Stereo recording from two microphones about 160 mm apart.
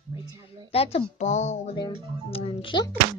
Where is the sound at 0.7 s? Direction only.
40° left (ahead or behind).